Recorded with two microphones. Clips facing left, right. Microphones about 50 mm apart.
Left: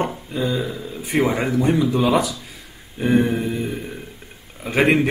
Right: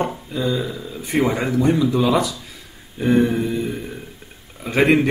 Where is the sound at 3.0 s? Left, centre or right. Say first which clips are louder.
Right 1 dB; centre.